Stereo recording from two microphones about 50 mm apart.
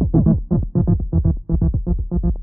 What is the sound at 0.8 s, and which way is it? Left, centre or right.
Music, centre.